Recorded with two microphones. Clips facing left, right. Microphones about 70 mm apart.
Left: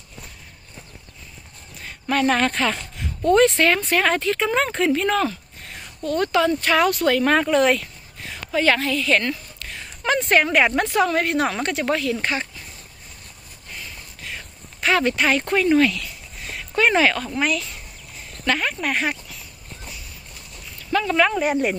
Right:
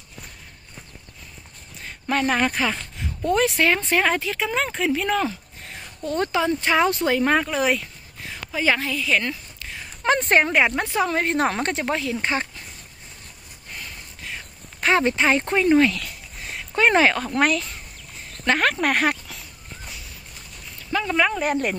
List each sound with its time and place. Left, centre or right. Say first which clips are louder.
1.8 s a sound: left 2 dB; centre
3.3 s speech: left 4 dB; centre
4.5 s speech: left 2 dB; centre
5.7 s speech: left 3 dB; right
7.3 s a woman's voice: left 4 dB; centre
9.1 s a sound: left 2 dB; centre
10.0 s speech: even; right
11.3 s a woman's voice: even; right
11.8 s speech: left 2 dB; centre
14.8 s speech: even; right
18.6 s speech: right 3 dB; right
20.9 s a sound: left 2 dB; centre
21.3 s speech: left 2 dB; centre